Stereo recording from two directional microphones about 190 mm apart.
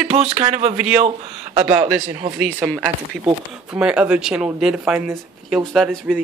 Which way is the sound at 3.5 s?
5° right (ahead or behind).